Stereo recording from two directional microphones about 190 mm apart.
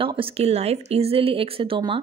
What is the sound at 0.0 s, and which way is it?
Speech, 30° right (ahead or behind).